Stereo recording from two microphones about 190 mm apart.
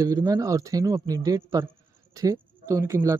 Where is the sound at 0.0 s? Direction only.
20° right (ahead or behind).